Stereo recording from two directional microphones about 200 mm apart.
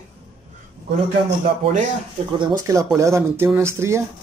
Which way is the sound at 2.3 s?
20° right (ahead or behind).